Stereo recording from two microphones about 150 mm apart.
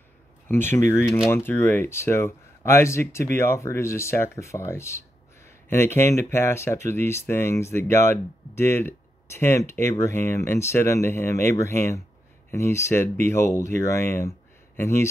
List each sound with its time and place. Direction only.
0.5 s speech: 15° left (ahead or behind)